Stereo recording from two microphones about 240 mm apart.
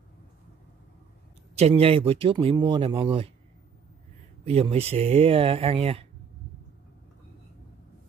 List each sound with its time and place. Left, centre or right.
1.5 s speech: right
4.5 s speech: right